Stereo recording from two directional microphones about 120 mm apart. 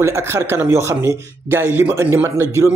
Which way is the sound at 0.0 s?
20° right (ahead or behind).